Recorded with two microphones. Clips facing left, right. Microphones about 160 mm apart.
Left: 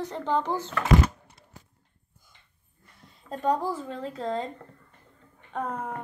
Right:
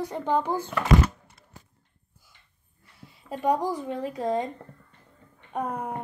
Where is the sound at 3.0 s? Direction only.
10° right (ahead or behind).